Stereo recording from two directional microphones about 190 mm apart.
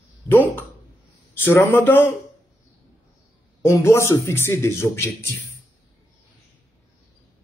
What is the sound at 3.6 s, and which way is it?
Speech, 15° left (ahead or behind).